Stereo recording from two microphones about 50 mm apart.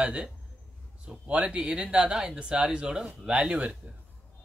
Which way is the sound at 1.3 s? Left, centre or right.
Right.